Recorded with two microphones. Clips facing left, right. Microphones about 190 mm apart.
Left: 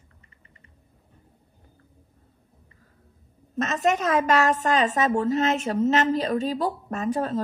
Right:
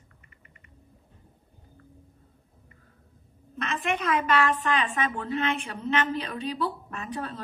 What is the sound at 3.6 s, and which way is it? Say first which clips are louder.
A woman's voice: left 6 dB; 40° left (ahead or behind).